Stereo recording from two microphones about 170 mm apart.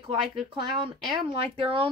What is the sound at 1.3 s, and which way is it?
Speech, 35° right (ahead or behind).